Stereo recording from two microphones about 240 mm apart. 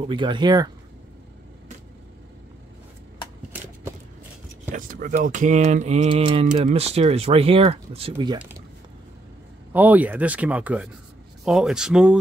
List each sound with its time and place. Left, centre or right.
0.1 s speech: centre
4.7 s speech: right
9.7 s speech: centre